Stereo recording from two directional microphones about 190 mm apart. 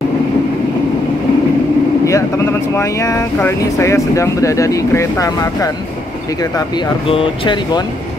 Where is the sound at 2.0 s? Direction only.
15° left (ahead or behind).